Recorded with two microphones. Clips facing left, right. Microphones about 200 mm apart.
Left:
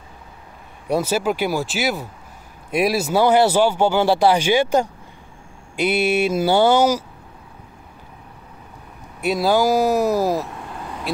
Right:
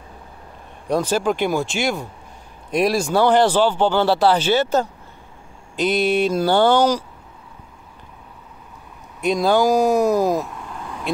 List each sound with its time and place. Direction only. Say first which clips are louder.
0.8 s speech: right 1 dB; 10° left (ahead or behind)
9.2 s speech: right 1 dB; 5° left (ahead or behind)
10.1 s speech: right 1 dB; 15° right (ahead or behind)